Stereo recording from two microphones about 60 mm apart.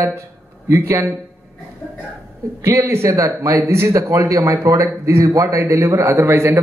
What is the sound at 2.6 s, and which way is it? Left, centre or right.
A man's voice, right.